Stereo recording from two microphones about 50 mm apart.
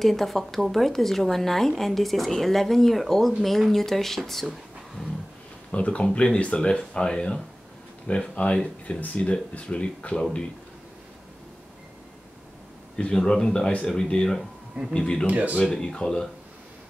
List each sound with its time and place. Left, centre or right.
0.0 s speech: centre
5.7 s speech: left
12.9 s speech: centre
13.7 s speech: left
15.2 s speech: right
15.6 s speech: centre